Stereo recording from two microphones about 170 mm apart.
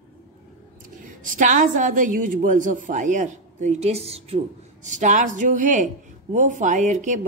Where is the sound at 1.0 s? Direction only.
50° right (ahead or behind).